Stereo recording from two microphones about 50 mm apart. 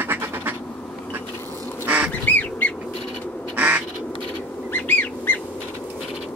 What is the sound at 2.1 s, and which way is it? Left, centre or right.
Goose, left.